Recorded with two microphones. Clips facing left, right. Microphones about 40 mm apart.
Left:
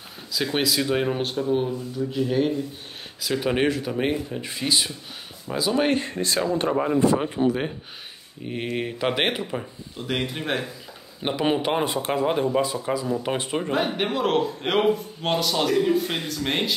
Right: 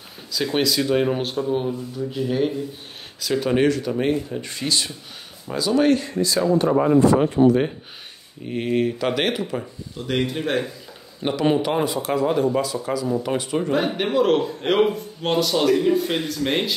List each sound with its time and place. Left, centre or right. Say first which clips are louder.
0.3 s speech: right 2 dB; centre
3.2 s speech: right 3 dB; centre
6.0 s speech: right 3 dB; left
6.7 s speech: right 4 dB; centre
8.9 s speech: right 1 dB; left
9.5 s speech: right 2 dB; centre
11.8 s speech: right 2 dB; left
12.9 s speech: right 2 dB; centre